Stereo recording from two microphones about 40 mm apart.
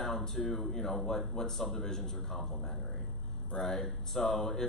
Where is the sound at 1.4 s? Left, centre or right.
Centre.